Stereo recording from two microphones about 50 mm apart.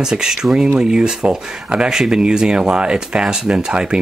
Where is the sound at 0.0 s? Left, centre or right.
Centre.